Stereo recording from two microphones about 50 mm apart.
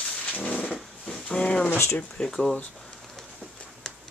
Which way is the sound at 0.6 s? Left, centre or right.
Centre.